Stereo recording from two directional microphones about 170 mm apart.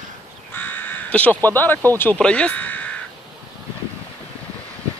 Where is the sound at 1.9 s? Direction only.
10° left (ahead or behind).